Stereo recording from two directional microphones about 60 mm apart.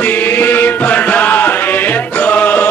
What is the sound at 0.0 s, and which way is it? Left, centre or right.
Music, left.